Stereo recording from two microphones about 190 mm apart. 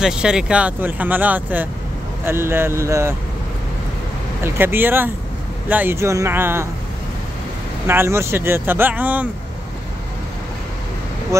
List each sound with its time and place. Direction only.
0.0 s speech: 5° right (ahead or behind)
4.4 s speech: 10° right (ahead or behind)
7.8 s speech: 15° right (ahead or behind)